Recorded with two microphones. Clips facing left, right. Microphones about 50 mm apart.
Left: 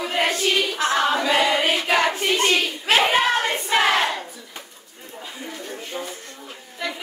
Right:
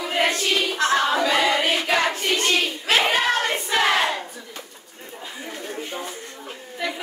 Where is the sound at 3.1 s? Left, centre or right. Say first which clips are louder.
Left 1 dB; centre.